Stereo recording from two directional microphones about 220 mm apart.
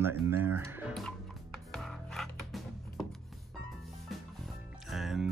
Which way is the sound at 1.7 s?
Centre (ahead or behind).